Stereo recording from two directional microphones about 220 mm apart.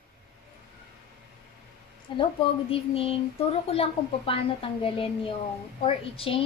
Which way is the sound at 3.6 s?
25° left (ahead or behind).